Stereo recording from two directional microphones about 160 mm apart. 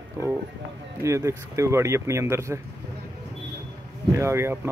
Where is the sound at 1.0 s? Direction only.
20° right (ahead or behind).